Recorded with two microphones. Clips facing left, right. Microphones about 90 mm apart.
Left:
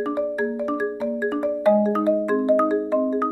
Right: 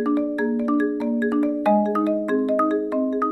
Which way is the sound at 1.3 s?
20° left (ahead or behind).